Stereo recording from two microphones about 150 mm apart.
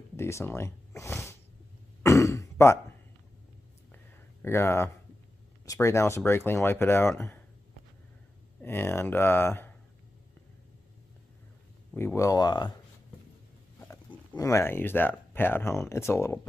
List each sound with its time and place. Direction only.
0.1 s speech: 20° left (ahead or behind)
2.0 s throat clearing: 20° left (ahead or behind)
3.9 s a sound: 15° left (ahead or behind)
5.7 s speech: 20° left (ahead or behind)
8.5 s speech: 15° left (ahead or behind)
11.9 s speech: 10° left (ahead or behind)
12.2 s speech: 25° left (ahead or behind)
13.7 s speech: 20° left (ahead or behind)